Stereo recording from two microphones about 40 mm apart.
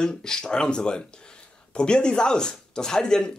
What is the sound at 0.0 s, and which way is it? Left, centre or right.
Speech, centre.